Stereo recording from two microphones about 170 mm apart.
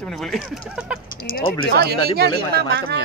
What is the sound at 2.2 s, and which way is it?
Speech, 70° right (ahead or behind).